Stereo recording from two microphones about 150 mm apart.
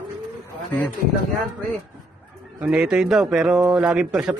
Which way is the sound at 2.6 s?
5° right (ahead or behind).